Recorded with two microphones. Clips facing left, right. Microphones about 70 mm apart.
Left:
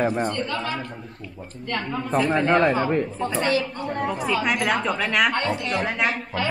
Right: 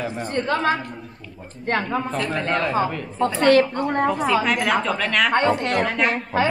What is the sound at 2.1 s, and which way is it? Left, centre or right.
Speech, centre.